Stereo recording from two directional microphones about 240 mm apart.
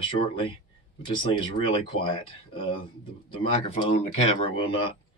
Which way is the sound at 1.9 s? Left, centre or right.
Left.